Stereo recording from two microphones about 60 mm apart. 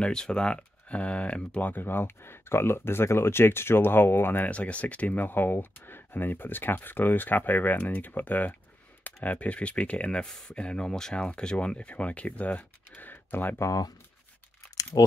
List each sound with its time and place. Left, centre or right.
0.0 s speech: centre; by 4.5 s left
4.5 s speech: left
13.6 s speech: left